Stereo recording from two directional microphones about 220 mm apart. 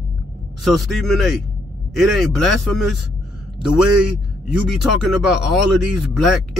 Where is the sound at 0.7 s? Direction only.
Centre (ahead or behind).